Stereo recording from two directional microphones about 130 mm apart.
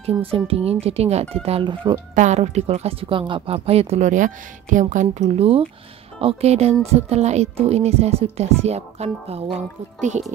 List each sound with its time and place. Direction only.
0.2 s a woman's voice: 45° right (ahead or behind)
2.1 s a woman's voice: 60° right (ahead or behind); by 5.0 s 75° right (ahead or behind)
5.1 s speech: 60° right (ahead or behind)